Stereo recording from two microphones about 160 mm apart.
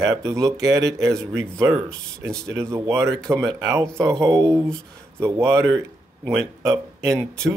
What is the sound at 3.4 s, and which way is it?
Speech, 20° right (ahead or behind).